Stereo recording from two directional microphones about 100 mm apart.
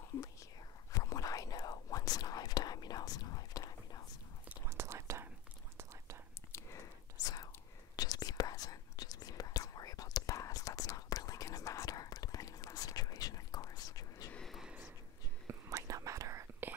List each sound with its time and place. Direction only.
0.9 s whispering: 35° left (ahead or behind)
4.6 s whispering: 25° right (ahead or behind)
6.5 s whispering: 25° left (ahead or behind)
7.2 s whispering: 40° left (ahead or behind)
14.3 s a sound: centre (ahead or behind)
15.4 s whispering: 35° right (ahead or behind)